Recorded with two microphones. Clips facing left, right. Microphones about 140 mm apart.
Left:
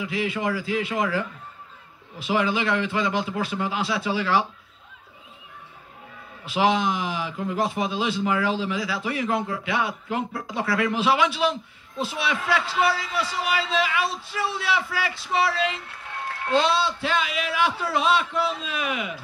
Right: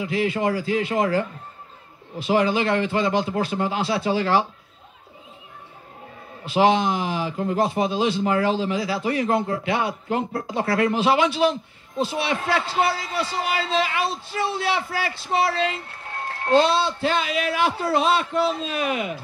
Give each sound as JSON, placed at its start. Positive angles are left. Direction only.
{"t": 0.0, "sound": "a man's voice", "side_deg": -40}
{"t": 2.2, "sound": "a man's voice", "side_deg": -40}
{"t": 6.5, "sound": "a man's voice", "side_deg": -35}